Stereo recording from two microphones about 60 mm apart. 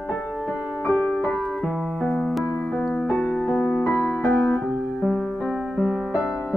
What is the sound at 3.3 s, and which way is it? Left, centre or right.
Music, left.